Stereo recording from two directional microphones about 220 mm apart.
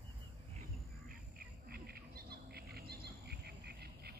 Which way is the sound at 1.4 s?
45° right (ahead or behind).